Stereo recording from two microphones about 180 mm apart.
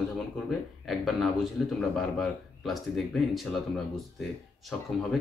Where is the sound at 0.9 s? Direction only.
Centre (ahead or behind).